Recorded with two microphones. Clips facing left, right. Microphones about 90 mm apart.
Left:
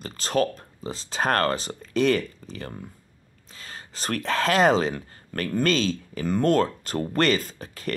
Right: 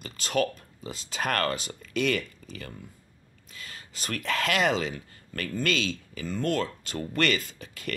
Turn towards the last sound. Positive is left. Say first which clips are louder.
# left 4 dB
turn(degrees=35)  # may be behind; listen again after turning